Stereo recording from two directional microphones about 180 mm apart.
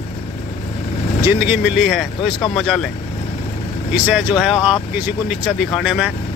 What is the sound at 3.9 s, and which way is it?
Speech, 5° right (ahead or behind).